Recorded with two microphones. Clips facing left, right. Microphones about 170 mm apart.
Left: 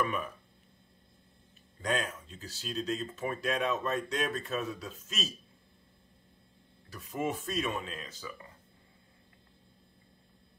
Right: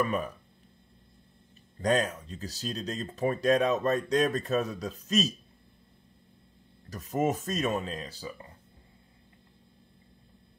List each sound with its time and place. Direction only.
1.8 s speech: 40° right (ahead or behind)
6.9 s speech: 40° right (ahead or behind)